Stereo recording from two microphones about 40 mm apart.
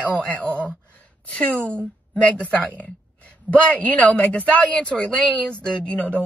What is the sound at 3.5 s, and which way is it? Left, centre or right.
A woman's voice, left.